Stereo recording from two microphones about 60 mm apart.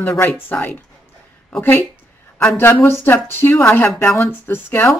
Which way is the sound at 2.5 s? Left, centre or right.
Left.